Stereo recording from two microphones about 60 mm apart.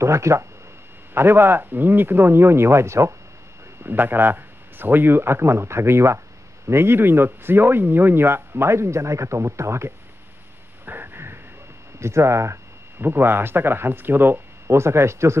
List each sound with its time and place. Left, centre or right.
0.0 s speech: right
1.1 s speech: right
3.8 s speech: right
10.9 s a sound: right
12.0 s speech: right
13.0 s speech: right